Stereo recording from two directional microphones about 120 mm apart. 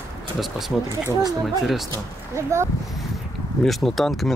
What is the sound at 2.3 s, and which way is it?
Speech, 25° right (ahead or behind).